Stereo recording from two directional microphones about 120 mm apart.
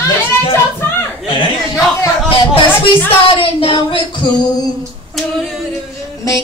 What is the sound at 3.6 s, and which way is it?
Speech, 45° left (ahead or behind).